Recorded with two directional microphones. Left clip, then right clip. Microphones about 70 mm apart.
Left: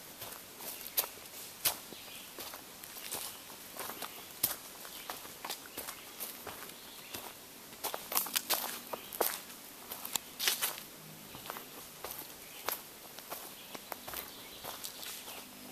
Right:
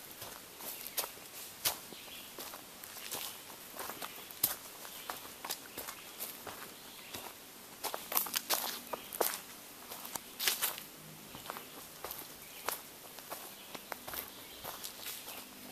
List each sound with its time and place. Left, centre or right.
1.0 s walk: centre
1.6 s a sound: centre
3.7 s walk: centre
7.8 s walk: centre
8.3 s walk: left
8.5 s walk: centre
10.4 s a sound: centre
11.4 s walk: centre
13.8 s insect: centre